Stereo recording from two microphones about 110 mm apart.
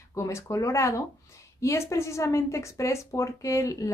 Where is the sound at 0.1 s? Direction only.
25° left (ahead or behind).